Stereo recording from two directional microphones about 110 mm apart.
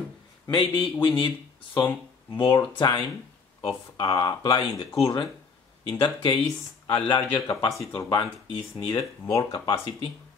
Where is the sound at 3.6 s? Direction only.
45° left (ahead or behind).